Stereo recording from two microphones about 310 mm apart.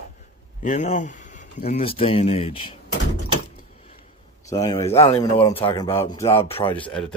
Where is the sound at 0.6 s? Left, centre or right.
Left.